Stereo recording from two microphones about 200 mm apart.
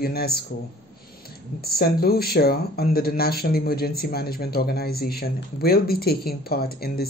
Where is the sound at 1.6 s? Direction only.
50° left (ahead or behind).